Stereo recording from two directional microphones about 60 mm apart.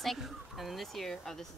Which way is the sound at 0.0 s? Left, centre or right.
Centre.